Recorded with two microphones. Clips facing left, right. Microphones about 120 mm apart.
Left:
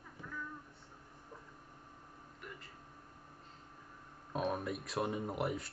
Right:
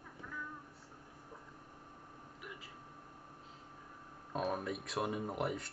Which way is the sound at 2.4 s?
5° right (ahead or behind).